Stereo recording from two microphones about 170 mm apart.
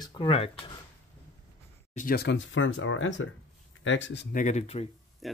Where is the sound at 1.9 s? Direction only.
55° left (ahead or behind).